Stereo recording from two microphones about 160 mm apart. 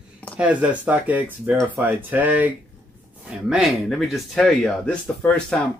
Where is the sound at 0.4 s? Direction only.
10° right (ahead or behind).